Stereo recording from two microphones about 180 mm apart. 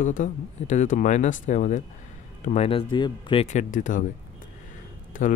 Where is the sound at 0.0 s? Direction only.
45° left (ahead or behind); by 3.4 s 25° left (ahead or behind).